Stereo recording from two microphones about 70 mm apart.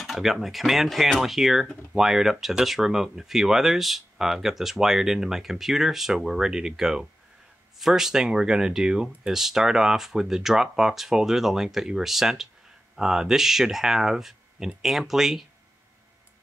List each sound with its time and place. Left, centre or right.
0.0 s speech: centre